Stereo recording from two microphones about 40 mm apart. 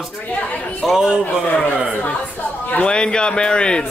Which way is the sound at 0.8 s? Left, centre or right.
Centre.